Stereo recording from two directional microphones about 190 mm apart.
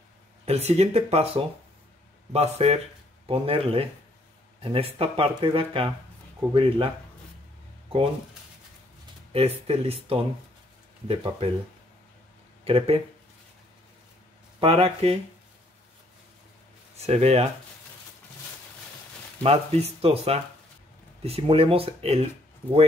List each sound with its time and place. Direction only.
0.5 s speech: 35° right (ahead or behind)
9.3 s speech: 30° right (ahead or behind)
12.6 s speech: 30° right (ahead or behind)
14.6 s speech: 30° right (ahead or behind)
16.9 s speech: 35° right (ahead or behind)
19.4 s speech: 30° right (ahead or behind)